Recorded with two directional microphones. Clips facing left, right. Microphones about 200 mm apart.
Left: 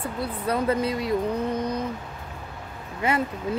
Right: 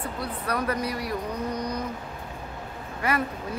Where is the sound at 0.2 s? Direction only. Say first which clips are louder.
Left 4 dB; 25° left (ahead or behind).